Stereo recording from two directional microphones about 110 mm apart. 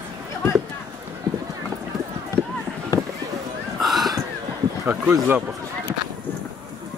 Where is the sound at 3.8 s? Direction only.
Centre (ahead or behind).